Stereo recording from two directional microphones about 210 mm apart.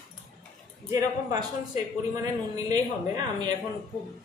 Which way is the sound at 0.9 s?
20° right (ahead or behind).